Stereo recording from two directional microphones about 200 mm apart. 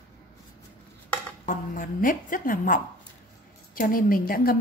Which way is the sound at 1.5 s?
45° left (ahead or behind).